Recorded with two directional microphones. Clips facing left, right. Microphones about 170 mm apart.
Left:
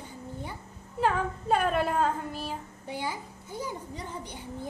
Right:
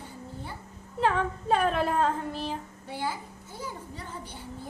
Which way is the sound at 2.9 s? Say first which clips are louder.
Right 1 dB; 15° left (ahead or behind).